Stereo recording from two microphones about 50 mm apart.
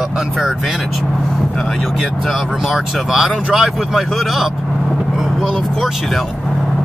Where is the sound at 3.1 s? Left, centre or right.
Centre.